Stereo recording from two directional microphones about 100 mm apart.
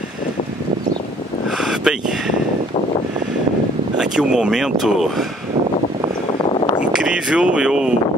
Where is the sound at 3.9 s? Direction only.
5° right (ahead or behind).